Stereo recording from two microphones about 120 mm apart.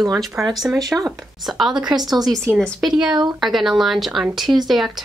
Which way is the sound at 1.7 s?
35° right (ahead or behind).